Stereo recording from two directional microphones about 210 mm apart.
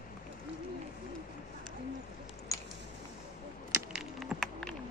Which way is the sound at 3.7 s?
5° right (ahead or behind).